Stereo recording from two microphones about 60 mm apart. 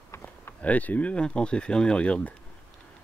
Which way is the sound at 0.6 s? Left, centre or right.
Left.